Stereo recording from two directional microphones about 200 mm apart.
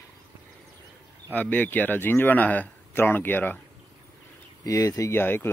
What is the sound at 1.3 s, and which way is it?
A man's voice, 10° left (ahead or behind).